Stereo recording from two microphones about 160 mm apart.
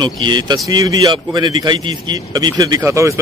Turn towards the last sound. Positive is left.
turn(degrees=-20)  # may be behind; listen again after turning